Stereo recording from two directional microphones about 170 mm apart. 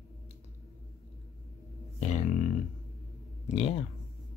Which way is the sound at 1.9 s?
40° left (ahead or behind).